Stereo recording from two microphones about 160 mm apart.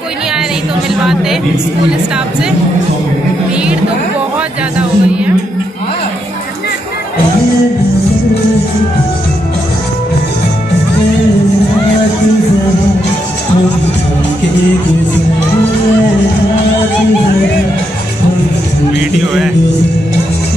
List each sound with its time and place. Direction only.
4.7 s speech: 5° right (ahead or behind)